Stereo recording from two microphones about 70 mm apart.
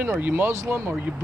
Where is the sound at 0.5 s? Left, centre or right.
Right.